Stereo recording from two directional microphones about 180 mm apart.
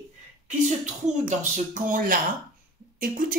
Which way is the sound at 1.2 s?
45° right (ahead or behind).